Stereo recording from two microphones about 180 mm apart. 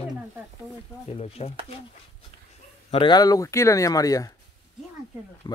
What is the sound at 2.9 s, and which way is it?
Speech, 25° left (ahead or behind).